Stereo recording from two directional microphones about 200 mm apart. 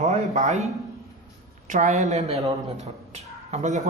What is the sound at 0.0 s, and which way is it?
Speech, 35° right (ahead or behind).